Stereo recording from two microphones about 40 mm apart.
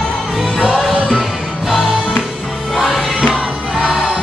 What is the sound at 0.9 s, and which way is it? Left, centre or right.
Music, right.